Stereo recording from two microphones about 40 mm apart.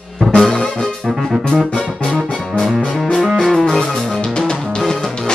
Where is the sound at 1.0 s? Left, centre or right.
Centre.